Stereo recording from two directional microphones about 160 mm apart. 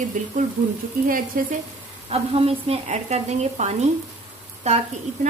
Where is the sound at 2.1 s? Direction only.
40° right (ahead or behind).